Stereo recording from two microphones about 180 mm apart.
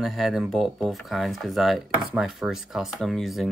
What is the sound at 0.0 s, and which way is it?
Speech, centre (ahead or behind).